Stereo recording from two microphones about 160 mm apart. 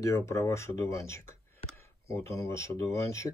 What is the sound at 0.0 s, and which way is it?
Speech, 15° left (ahead or behind).